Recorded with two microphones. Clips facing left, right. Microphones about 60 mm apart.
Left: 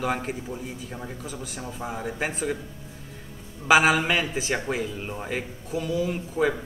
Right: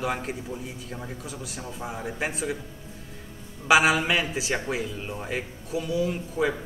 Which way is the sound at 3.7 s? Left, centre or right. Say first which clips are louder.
Left 1 dB; centre.